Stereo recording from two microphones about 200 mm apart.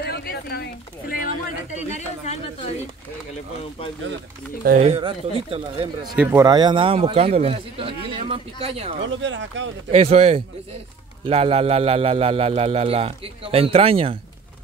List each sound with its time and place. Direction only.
0.0 s a sound: 50° left (ahead or behind)
1.2 s a sound: 35° left (ahead or behind)
4.7 s speech: 30° right (ahead or behind)
6.1 s speech: 15° right (ahead or behind); by 8.9 s 30° right (ahead or behind)
9.0 s speech: 65° right (ahead or behind)
9.8 s speech: 30° right (ahead or behind)